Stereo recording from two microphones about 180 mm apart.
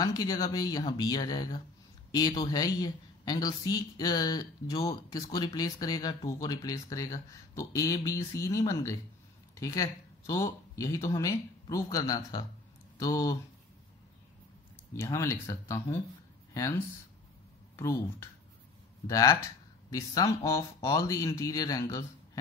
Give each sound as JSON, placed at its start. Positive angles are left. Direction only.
{"t": 0.0, "sound": "a woman's voice", "side_deg": 20}
{"t": 15.0, "sound": "a woman's voice", "side_deg": 15}